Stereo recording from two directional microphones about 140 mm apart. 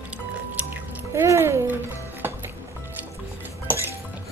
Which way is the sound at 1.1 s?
20° right (ahead or behind).